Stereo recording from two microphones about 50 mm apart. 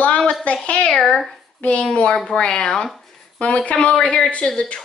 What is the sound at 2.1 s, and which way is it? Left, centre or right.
Speech, centre.